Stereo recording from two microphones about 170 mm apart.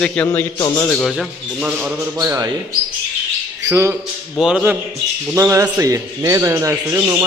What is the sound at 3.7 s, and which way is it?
Speech, 15° right (ahead or behind).